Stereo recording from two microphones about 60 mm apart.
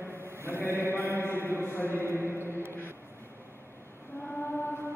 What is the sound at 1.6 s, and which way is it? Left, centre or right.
Speech, left.